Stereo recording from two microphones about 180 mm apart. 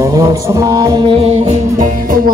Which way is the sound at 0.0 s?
15° right (ahead or behind).